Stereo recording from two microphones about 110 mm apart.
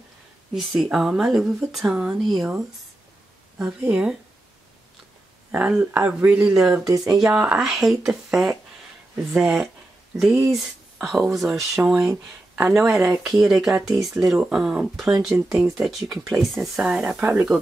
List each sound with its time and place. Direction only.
0.6 s speech: 5° right (ahead or behind)
5.5 s speech: 10° right (ahead or behind)
5.8 s speech: 20° right (ahead or behind)
6.1 s speech: 10° right (ahead or behind)